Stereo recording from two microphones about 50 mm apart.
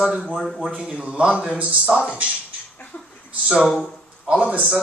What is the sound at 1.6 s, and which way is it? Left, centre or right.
Speech, right.